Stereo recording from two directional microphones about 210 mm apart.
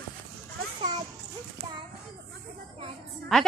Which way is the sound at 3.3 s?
Centre (ahead or behind).